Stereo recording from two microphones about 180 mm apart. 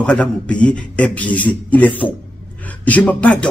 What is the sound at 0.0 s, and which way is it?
Speech, 5° left (ahead or behind).